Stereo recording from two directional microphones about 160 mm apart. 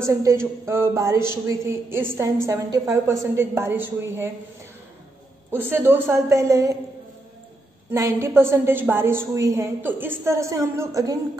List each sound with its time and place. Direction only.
0.0 s a sound: 20° right (ahead or behind)
0.7 s a woman's voice: 15° right (ahead or behind)
5.5 s a woman's voice: 15° right (ahead or behind)
7.9 s a woman's voice: 15° right (ahead or behind)